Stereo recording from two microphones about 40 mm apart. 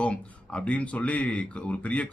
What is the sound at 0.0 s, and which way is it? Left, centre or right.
Speech, left.